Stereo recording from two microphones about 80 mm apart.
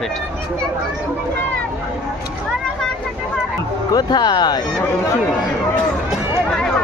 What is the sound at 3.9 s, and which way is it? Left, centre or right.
Speech, left.